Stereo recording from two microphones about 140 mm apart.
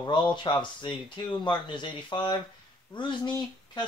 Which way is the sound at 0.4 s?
35° left (ahead or behind).